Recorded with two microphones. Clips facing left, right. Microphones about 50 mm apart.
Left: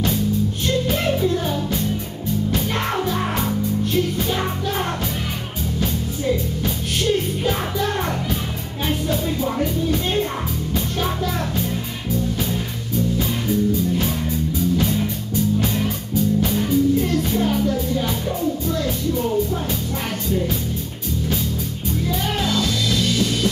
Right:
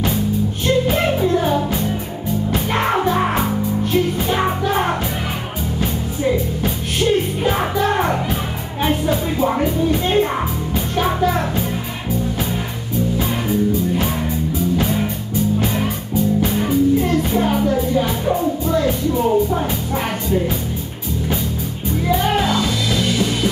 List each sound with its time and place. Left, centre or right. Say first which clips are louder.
0.7 s music: right 5 dB; right
13.2 s music: right 2 dB; right
22.1 s music: right 7 dB; right